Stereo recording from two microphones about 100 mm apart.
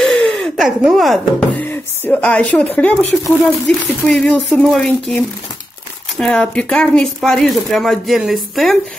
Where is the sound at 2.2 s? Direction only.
10° left (ahead or behind).